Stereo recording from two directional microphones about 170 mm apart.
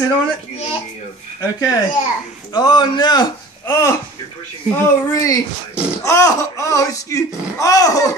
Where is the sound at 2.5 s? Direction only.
25° left (ahead or behind).